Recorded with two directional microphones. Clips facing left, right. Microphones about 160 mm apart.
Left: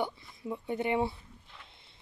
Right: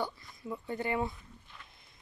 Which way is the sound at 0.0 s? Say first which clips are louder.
Left 3 dB; 20° left (ahead or behind).